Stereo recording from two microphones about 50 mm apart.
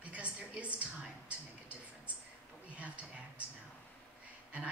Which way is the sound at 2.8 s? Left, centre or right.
Right.